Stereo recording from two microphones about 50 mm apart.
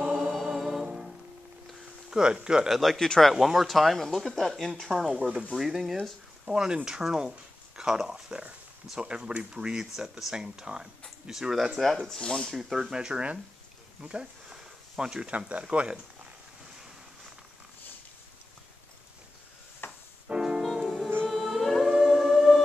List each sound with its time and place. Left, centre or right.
0.0 s music: centre
2.0 s speech: centre
2.7 s speech: centre
3.3 s speech: centre
11.7 s speech: centre
12.2 s speech: centre
12.4 s speech: centre; by 16.0 s right
19.8 s music: left
20.2 s music: centre
20.6 s music: centre
21.8 s a sound: centre